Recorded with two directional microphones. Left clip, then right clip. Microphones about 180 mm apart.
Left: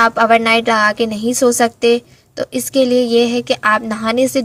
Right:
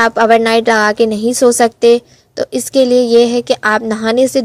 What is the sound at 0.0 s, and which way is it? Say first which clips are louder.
A woman's voice: right 2 dB; 50° right (ahead or behind).